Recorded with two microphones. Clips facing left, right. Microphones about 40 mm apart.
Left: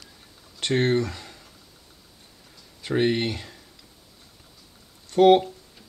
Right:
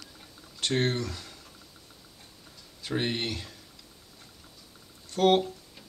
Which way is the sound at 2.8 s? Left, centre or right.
Left.